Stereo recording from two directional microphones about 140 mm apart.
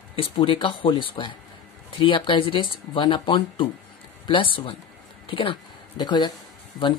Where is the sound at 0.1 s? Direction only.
40° left (ahead or behind).